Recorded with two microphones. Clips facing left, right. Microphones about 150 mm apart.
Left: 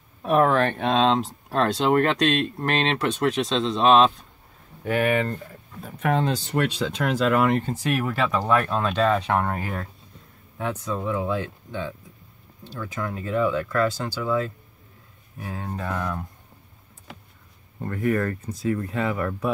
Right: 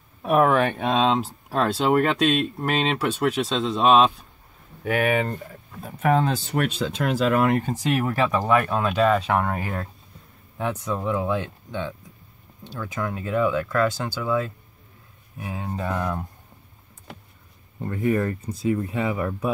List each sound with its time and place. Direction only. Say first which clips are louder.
0.2 s speech: right 1 dB; 10° right (ahead or behind)
7.7 s speech: right 2 dB; 15° right (ahead or behind)
10.6 s speech: right 1 dB; 15° right (ahead or behind)
15.3 s speech: right 2 dB; 15° right (ahead or behind)
17.8 s speech: right 1 dB; 20° right (ahead or behind)